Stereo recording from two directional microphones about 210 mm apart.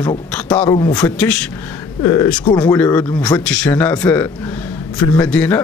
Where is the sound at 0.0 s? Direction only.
25° left (ahead or behind).